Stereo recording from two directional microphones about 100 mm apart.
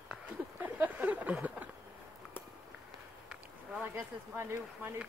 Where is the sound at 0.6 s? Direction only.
15° right (ahead or behind).